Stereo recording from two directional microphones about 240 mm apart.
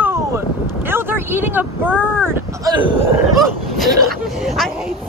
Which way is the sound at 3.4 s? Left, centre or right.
Centre.